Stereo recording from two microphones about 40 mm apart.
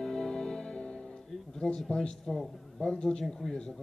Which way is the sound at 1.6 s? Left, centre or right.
Centre.